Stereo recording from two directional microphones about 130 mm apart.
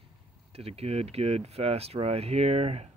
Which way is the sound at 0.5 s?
50° right (ahead or behind).